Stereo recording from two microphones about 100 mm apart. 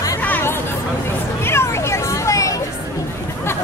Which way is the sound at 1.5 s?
25° left (ahead or behind).